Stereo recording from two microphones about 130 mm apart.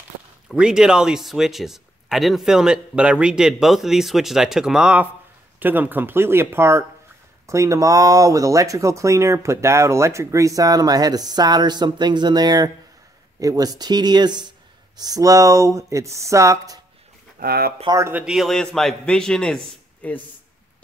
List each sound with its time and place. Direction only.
0.5 s speech: 5° right (ahead or behind); by 16.8 s 25° right (ahead or behind)
17.8 s speech: 25° right (ahead or behind)
18.1 s speech: 5° right (ahead or behind)